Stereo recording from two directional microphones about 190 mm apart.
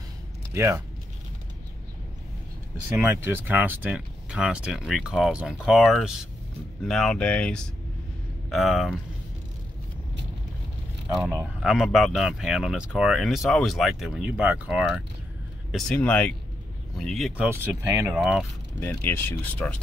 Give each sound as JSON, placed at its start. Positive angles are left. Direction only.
{"t": 0.6, "sound": "speech", "side_deg": -15}
{"t": 3.0, "sound": "speech", "side_deg": -10}
{"t": 11.3, "sound": "speech", "side_deg": 0}
{"t": 15.7, "sound": "speech", "side_deg": 5}
{"t": 17.6, "sound": "speech", "side_deg": -15}
{"t": 18.1, "sound": "speech", "side_deg": -5}
{"t": 18.8, "sound": "speech", "side_deg": 10}